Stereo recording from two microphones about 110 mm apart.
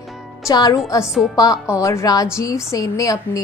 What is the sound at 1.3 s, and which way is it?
Speech, 35° left (ahead or behind).